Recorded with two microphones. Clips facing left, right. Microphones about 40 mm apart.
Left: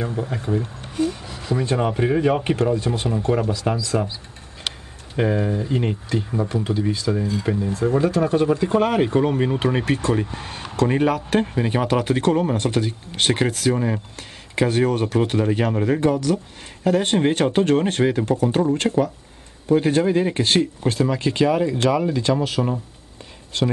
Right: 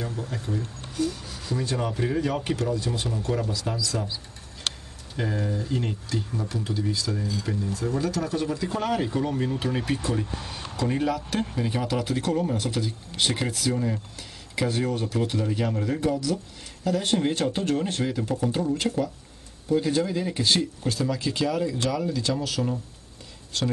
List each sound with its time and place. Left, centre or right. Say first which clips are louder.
0.0 s speech: left 7 dB; left
5.1 s speech: left 8 dB; left
10.8 s speech: left 7 dB; left